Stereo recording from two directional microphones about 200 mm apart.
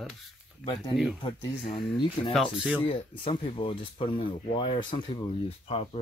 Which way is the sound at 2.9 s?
30° left (ahead or behind).